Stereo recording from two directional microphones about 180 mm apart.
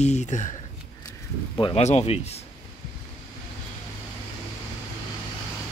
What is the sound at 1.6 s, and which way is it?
Speech, 35° left (ahead or behind).